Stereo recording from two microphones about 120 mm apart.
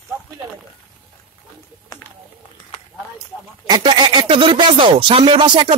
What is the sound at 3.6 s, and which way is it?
Speech, 35° right (ahead or behind).